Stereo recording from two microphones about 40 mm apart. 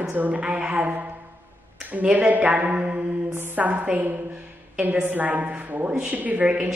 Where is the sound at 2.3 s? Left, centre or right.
Right.